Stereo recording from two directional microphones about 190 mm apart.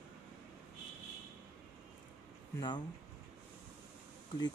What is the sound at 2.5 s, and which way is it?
Speech, 25° left (ahead or behind).